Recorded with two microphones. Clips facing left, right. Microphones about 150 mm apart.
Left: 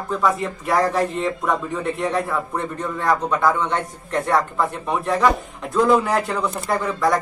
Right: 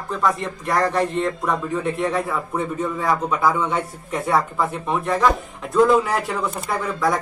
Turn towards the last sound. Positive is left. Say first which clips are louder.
# left 2 dB
turn(degrees=0)  # may be behind; listen again after turning